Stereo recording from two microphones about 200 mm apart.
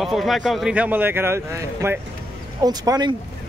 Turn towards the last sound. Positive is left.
turn(degrees=-20)  # may be behind; listen again after turning